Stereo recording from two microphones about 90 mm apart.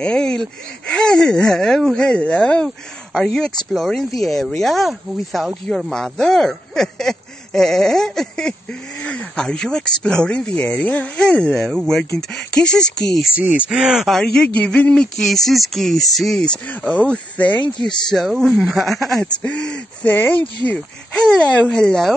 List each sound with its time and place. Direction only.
0.0 s speech: 10° left (ahead or behind)
13.4 s speech: 15° right (ahead or behind)
14.0 s speech: 5° left (ahead or behind)